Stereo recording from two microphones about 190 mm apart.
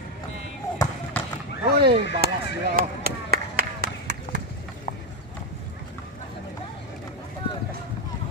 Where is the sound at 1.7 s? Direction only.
55° right (ahead or behind).